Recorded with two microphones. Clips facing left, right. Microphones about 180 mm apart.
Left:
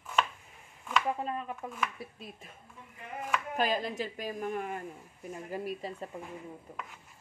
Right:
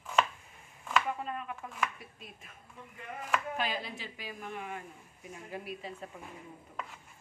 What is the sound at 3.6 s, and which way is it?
A woman's voice, 45° left (ahead or behind).